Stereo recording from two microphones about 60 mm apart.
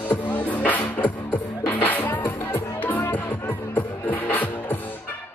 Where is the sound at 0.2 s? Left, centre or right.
Left.